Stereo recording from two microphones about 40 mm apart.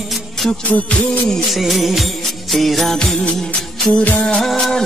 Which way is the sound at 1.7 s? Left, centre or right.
Centre.